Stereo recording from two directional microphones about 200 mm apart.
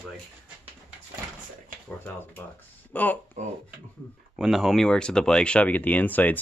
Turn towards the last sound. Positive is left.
turn(degrees=10)  # may be behind; listen again after turning